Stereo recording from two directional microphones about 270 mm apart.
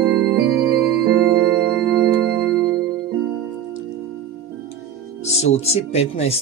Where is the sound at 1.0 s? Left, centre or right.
Right.